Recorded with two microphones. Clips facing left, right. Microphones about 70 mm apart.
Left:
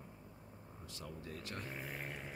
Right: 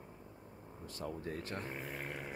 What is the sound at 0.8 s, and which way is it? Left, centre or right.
Speech, right.